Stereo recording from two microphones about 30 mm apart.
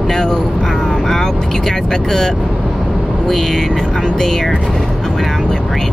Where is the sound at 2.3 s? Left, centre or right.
Centre.